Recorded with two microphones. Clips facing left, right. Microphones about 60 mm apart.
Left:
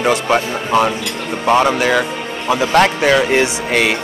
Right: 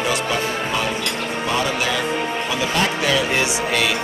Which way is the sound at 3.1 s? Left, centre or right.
Left.